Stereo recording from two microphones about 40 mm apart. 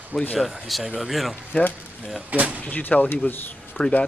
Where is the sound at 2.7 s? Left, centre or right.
Left.